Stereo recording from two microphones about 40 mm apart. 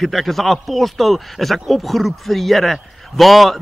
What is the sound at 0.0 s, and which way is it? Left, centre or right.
Speech, centre.